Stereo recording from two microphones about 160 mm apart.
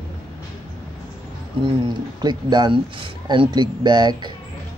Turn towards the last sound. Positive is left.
turn(degrees=-30)  # may be behind; listen again after turning